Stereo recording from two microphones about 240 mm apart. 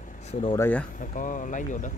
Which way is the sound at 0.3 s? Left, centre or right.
Left.